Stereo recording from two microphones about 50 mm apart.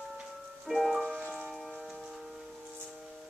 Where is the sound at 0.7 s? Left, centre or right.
Centre.